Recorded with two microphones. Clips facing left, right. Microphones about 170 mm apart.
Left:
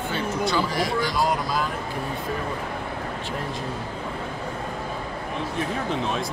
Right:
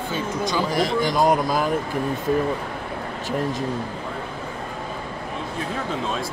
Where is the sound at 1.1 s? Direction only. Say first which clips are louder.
Right 5 dB; 45° right (ahead or behind).